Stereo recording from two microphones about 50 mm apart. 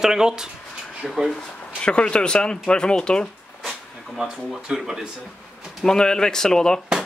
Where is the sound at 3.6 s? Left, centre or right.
Centre.